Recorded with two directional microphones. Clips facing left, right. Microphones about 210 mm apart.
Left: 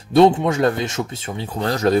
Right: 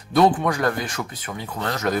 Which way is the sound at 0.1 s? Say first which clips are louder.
Left 5 dB; 25° left (ahead or behind).